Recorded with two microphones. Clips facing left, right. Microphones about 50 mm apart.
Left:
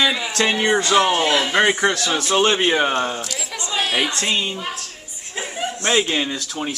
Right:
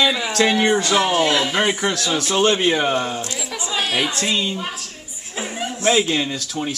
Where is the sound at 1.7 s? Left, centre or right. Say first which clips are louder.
Left 3 dB; left.